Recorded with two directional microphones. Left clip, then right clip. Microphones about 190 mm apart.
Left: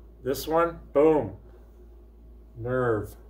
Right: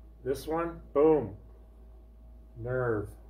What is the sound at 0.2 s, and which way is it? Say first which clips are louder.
Speech: left 7 dB; 25° left (ahead or behind).